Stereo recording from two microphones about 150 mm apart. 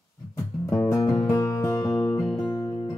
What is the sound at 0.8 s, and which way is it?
Music, 25° left (ahead or behind).